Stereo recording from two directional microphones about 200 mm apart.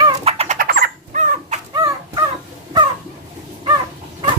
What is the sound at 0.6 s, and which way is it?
Bird, 50° right (ahead or behind).